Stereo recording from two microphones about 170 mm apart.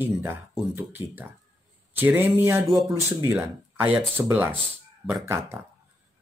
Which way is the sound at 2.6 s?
Centre (ahead or behind).